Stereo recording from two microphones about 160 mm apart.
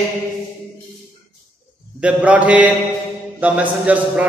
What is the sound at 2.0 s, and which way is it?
A man's voice, 10° right (ahead or behind).